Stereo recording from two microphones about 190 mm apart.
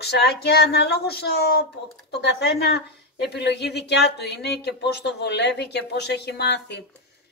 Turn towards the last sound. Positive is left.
turn(degrees=65)  # may be behind; listen again after turning